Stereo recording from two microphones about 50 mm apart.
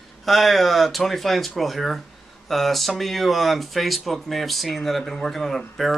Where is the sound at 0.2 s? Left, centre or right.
Centre.